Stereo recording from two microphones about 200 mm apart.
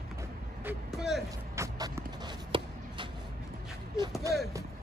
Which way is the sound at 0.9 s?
Centre (ahead or behind).